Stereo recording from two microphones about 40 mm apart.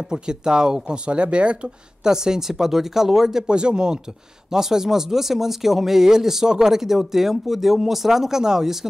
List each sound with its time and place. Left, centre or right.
0.1 s speech: centre
2.0 s speech: centre
3.4 s speech: right